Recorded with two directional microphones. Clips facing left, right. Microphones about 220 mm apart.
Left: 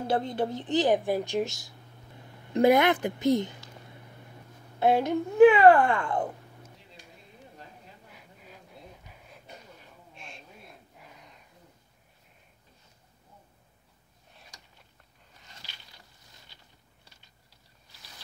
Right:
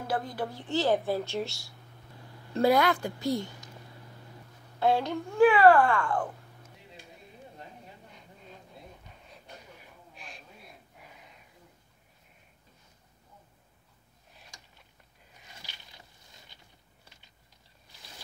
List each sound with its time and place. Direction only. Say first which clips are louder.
0.0 s a woman's voice: left 5 dB; 25° left (ahead or behind)
4.7 s speech: left 3 dB; 20° left (ahead or behind)
8.1 s a sound: right 1 dB; 5° left (ahead or behind)